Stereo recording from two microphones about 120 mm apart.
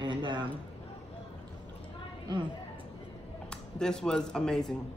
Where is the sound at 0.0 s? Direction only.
40° right (ahead or behind).